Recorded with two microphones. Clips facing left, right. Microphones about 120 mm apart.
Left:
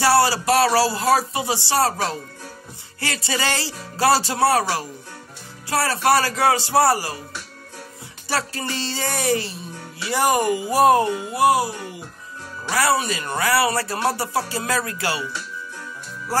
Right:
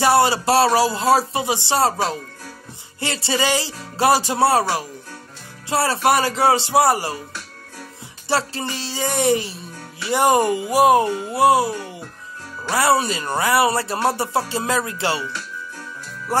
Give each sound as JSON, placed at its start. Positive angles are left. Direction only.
{"t": 0.0, "sound": "a man's voice", "side_deg": -20}
{"t": 3.4, "sound": "music", "side_deg": -15}
{"t": 3.9, "sound": "speech", "side_deg": -20}
{"t": 8.3, "sound": "speech", "side_deg": -25}
{"t": 8.7, "sound": "music", "side_deg": -10}
{"t": 10.0, "sound": "speech", "side_deg": -25}
{"t": 10.7, "sound": "speech", "side_deg": -15}
{"t": 12.7, "sound": "speech", "side_deg": -30}
{"t": 16.3, "sound": "speech", "side_deg": -20}